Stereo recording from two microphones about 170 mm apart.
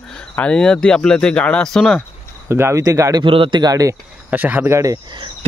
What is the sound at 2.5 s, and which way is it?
Speech, 15° right (ahead or behind).